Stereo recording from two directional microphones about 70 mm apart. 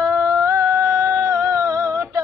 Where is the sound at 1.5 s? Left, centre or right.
Right.